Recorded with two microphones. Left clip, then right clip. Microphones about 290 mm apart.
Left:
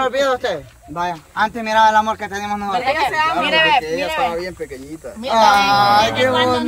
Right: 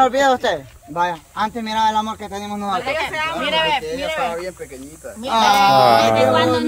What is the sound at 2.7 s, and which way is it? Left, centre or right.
Speech, left.